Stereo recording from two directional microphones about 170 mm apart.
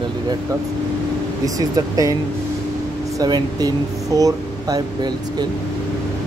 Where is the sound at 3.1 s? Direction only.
25° right (ahead or behind).